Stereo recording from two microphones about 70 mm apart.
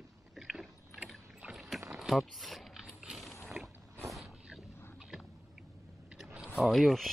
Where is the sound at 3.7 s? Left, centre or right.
Right.